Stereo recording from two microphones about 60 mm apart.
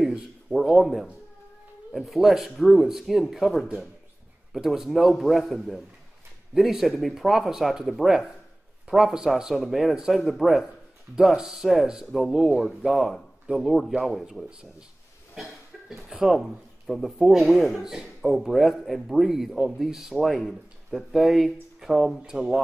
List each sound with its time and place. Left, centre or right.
0.0 s a sound: centre
1.9 s speech: centre
16.0 s speech: centre